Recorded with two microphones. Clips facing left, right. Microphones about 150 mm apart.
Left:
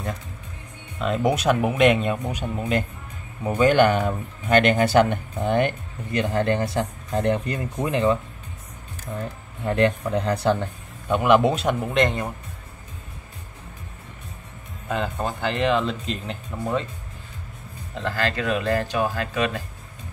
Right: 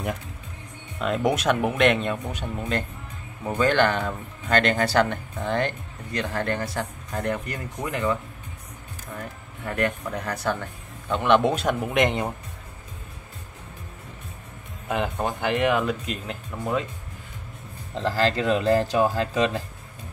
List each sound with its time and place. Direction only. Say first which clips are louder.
0.9 s speech: left 1 dB; centre (ahead or behind)
3.5 s speech: left 4 dB; 15° left (ahead or behind)
11.1 s speech: left 2 dB; 10° left (ahead or behind)
11.9 s speech: even; 15° right (ahead or behind)
15.2 s speech: even; 15° right (ahead or behind)
17.9 s speech: right 3 dB; 30° right (ahead or behind)